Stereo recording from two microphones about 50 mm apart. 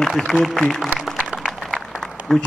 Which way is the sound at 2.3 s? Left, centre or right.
Centre.